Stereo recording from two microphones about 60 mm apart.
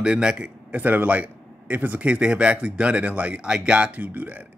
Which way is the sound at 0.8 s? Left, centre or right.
Right.